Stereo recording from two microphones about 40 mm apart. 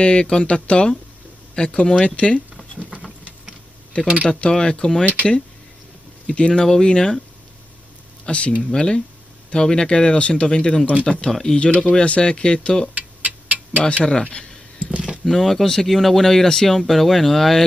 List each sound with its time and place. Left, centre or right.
0.0 s speech: left
3.9 s speech: left
6.2 s speech: left
6.5 s speech: centre
8.3 s speech: left
8.6 s speech: centre
11.2 s speech: centre
11.5 s speech: left
12.9 s a sound: right
13.7 s speech: left
14.9 s a sound: centre
15.2 s speech: centre